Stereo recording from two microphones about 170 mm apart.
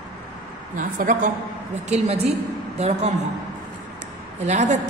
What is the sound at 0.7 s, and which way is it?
Speech, 50° right (ahead or behind).